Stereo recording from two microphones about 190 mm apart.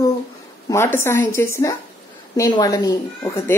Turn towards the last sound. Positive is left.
turn(degrees=20)  # may be behind; listen again after turning